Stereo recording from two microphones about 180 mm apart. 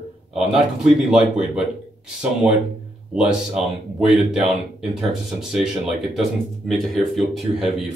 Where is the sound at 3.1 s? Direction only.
5° right (ahead or behind).